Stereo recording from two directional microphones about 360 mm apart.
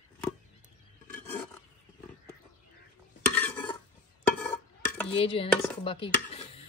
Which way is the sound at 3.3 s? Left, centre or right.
Centre.